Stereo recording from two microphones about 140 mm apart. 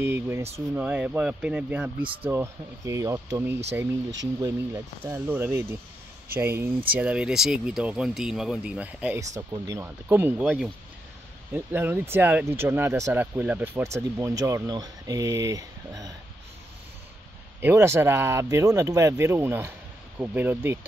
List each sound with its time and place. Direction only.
0.0 s speech: 15° right (ahead or behind)
5.0 s speech: 15° right (ahead or behind)
9.5 s speech: 20° right (ahead or behind)
17.6 s speech: 15° right (ahead or behind)